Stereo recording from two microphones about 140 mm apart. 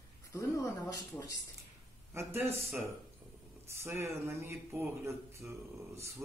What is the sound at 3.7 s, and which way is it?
Speech, 15° right (ahead or behind).